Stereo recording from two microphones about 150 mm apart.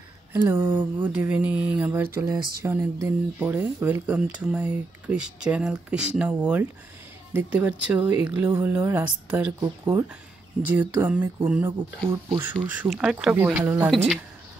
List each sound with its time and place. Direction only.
0.3 s speech: 15° right (ahead or behind)
9.6 s speech: 25° right (ahead or behind)
10.7 s speech: 10° right (ahead or behind)